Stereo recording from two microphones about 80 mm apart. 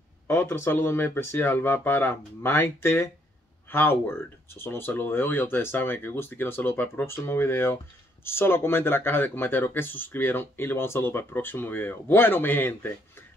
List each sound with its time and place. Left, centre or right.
0.3 s speech: left